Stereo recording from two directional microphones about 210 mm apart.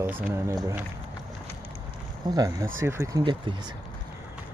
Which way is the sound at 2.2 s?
20° right (ahead or behind).